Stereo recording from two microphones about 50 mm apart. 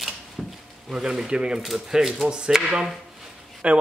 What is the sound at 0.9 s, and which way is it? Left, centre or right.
Speech, centre.